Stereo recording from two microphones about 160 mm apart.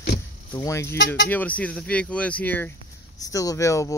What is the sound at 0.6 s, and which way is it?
Speech, 20° left (ahead or behind).